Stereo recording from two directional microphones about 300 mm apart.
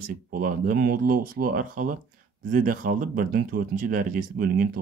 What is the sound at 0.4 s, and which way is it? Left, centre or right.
Speech, right.